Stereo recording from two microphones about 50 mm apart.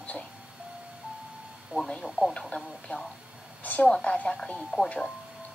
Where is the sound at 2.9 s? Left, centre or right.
Left.